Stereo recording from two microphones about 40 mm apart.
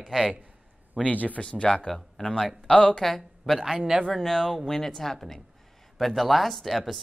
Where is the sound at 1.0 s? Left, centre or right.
Left.